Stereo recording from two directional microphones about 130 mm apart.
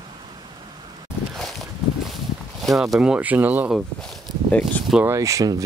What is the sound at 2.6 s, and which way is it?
Speech, centre (ahead or behind).